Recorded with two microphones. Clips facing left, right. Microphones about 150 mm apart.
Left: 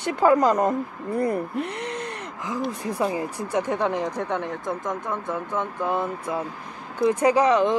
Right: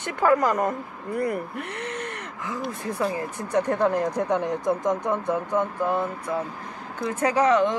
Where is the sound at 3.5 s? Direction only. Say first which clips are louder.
Right 3 dB; centre (ahead or behind); by 5.6 s 20° right (ahead or behind).